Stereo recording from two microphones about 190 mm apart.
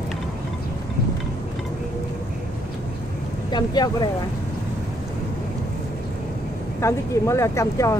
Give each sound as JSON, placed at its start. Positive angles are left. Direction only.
{"t": 3.5, "sound": "speech", "side_deg": 20}
{"t": 6.8, "sound": "speech", "side_deg": 15}